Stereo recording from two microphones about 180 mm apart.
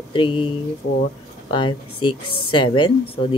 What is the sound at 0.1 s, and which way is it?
Speech, 30° left (ahead or behind).